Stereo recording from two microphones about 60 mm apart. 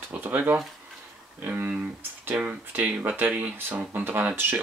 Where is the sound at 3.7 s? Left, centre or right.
Right.